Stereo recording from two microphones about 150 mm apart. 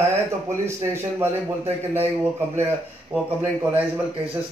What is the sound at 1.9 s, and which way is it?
A man's voice, 15° right (ahead or behind).